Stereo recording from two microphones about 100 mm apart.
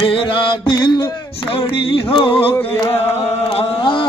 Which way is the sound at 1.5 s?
65° left (ahead or behind).